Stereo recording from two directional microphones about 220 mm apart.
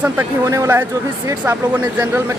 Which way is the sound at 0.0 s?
10° right (ahead or behind).